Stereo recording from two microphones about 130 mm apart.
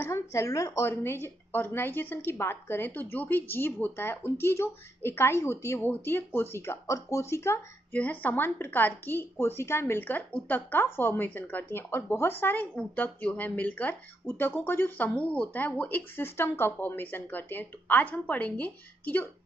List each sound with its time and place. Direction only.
0.0 s a woman's voice: 20° left (ahead or behind)